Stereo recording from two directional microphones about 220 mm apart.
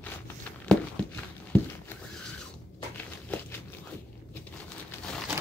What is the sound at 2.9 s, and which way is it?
Walk, 5° left (ahead or behind).